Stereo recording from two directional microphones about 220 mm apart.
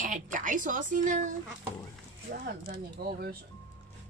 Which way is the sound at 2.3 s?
40° right (ahead or behind).